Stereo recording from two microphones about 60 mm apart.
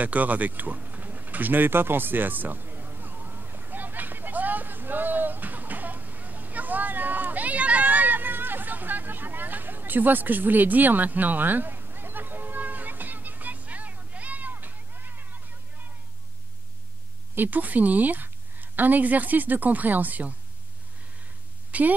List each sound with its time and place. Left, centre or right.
0.0 s pigeon: right
17.4 s a woman's voice: right
21.7 s a sound: right